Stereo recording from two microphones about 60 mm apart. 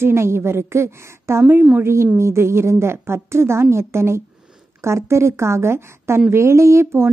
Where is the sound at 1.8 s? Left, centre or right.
Right.